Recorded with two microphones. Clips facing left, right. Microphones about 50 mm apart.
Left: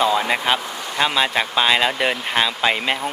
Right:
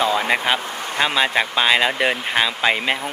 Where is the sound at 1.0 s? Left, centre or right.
Centre.